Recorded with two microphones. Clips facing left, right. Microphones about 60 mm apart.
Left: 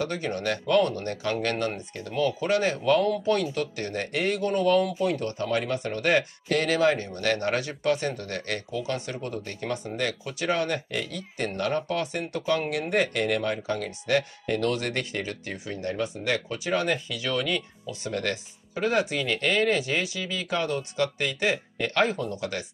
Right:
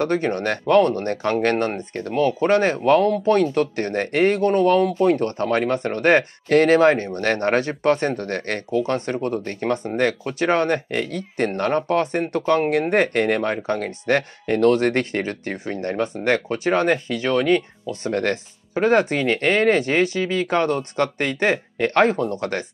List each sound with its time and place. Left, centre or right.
0.0 s speech: right